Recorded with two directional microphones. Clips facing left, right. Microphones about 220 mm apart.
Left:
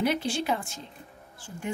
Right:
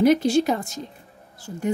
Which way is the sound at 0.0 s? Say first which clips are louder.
Right 10 dB; 45° right (ahead or behind).